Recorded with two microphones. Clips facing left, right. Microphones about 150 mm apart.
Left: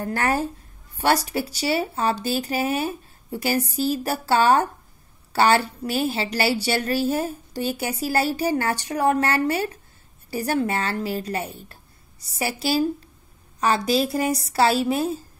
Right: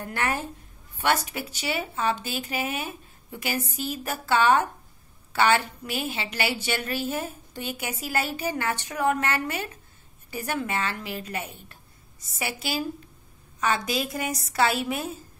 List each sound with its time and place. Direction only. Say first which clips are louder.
0.0 s a woman's voice: left 6 dB; 40° left (ahead or behind)